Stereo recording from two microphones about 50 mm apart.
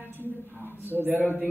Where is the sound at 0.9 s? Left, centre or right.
Right.